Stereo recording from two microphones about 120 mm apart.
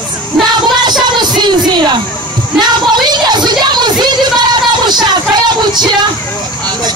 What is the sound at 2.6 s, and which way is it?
A woman's voice, 35° right (ahead or behind).